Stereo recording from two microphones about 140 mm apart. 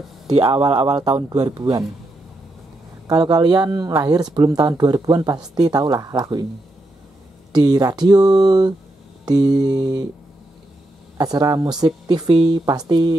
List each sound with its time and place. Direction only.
0.4 s speech: 40° right (ahead or behind)
3.1 s speech: 30° right (ahead or behind)
7.5 s speech: 30° right (ahead or behind)
11.1 s speech: 30° right (ahead or behind)